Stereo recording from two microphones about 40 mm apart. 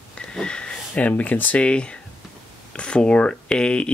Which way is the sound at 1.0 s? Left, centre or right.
Left.